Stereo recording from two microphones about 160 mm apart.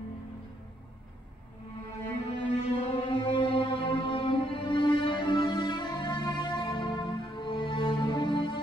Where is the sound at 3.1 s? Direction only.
35° left (ahead or behind).